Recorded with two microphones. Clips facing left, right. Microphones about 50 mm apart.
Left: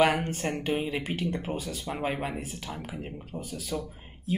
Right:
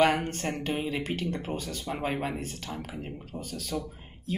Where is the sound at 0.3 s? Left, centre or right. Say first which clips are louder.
Left 2 dB; centre.